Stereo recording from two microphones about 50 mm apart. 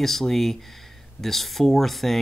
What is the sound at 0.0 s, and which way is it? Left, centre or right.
Speech, centre.